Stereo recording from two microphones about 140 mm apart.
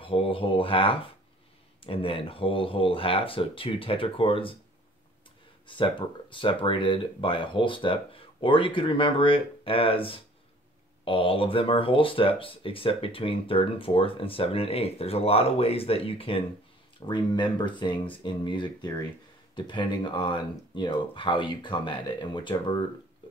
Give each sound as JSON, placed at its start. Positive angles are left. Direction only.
{"t": 0.0, "sound": "speech", "side_deg": 40}
{"t": 5.7, "sound": "speech", "side_deg": 35}